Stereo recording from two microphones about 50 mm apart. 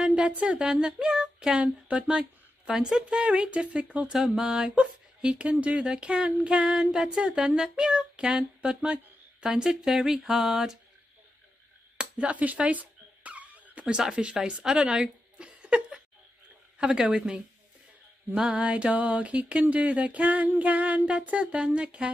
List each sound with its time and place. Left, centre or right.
0.0 s speech: right
2.7 s speech: centre
3.0 s female singing: centre
4.1 s speech: centre
12.0 s a sound: right
16.7 s speech: centre
18.4 s female singing: centre